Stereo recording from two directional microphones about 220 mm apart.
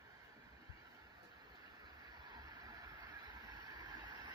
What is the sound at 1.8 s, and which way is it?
Vehicle, 20° right (ahead or behind).